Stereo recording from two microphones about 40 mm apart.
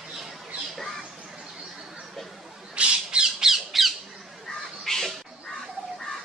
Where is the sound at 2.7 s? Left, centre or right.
Right.